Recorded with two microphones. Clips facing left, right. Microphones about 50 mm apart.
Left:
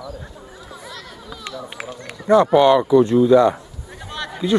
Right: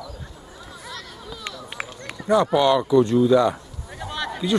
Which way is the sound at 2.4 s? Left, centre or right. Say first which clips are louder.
Left 5 dB; centre.